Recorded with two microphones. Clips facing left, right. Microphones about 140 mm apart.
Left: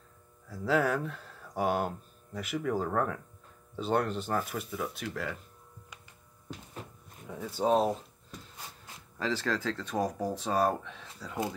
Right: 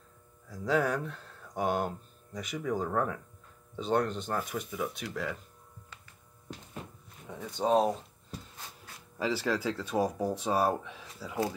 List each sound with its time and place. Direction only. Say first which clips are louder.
0.5 s speech: left 1 dB; centre (ahead or behind)
7.2 s speech: left 1 dB; 5° left (ahead or behind)
9.2 s speech: right 1 dB; 10° right (ahead or behind)